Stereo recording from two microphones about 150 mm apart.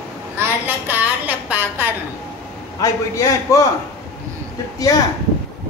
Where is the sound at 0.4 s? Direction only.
10° right (ahead or behind).